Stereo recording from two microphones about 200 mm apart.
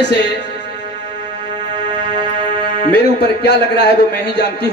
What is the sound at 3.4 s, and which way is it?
Speech, 55° left (ahead or behind).